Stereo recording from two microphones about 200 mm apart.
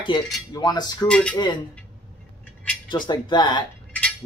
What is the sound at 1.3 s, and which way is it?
Speech, 20° left (ahead or behind).